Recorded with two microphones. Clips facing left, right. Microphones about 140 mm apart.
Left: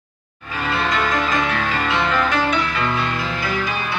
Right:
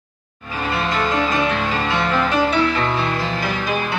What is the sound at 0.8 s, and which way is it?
Music, 25° right (ahead or behind).